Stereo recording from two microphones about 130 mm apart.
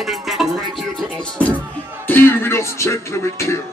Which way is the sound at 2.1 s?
15° left (ahead or behind).